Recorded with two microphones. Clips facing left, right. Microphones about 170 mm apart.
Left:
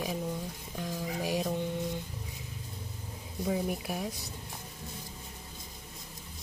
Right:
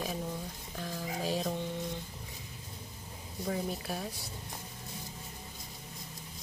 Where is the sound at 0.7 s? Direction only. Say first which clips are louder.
Left 2 dB; 10° left (ahead or behind).